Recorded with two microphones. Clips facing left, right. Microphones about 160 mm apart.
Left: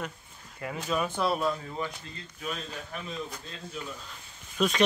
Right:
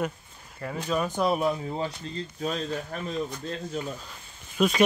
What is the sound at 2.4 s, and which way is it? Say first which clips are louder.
Speech: right 6 dB; 35° right (ahead or behind).